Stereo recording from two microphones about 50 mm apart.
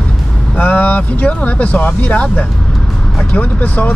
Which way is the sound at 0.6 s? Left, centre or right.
Left.